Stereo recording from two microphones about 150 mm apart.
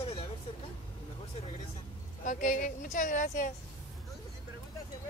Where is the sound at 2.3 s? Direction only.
60° left (ahead or behind).